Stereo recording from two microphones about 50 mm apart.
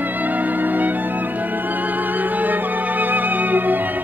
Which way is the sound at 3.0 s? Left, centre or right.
Right.